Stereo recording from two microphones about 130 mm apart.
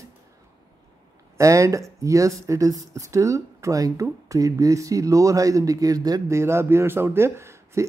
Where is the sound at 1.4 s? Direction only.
25° right (ahead or behind).